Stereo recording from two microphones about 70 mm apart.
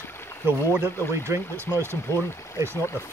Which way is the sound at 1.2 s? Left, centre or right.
Right.